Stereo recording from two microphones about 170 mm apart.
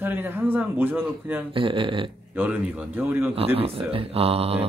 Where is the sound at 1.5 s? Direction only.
30° right (ahead or behind).